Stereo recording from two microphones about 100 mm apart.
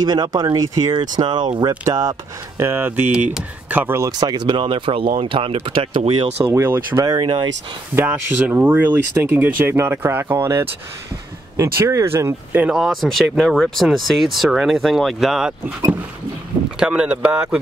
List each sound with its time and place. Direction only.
0.0 s speech: 45° right (ahead or behind)
0.9 s speech: 50° right (ahead or behind)
1.9 s speech: 30° right (ahead or behind)
4.2 s speech: 50° right (ahead or behind); by 6.4 s 75° right (ahead or behind)
6.5 s speech: 25° right (ahead or behind)
7.1 s speech: 50° right (ahead or behind)
7.9 s speech: 20° right (ahead or behind)
12.7 s speech: centre (ahead or behind)
16.8 s speech: 10° right (ahead or behind)